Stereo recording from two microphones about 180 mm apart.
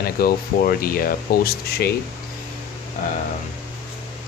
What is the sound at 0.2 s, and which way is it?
Speech, 55° left (ahead or behind).